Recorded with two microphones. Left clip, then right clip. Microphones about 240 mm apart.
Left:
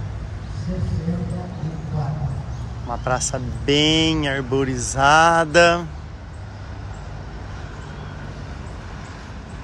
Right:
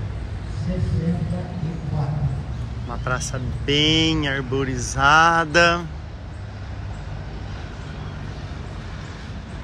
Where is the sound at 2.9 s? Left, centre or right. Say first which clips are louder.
Left 4 dB; centre.